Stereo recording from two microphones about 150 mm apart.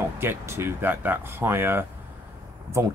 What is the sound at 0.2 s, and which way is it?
Speech, 15° right (ahead or behind).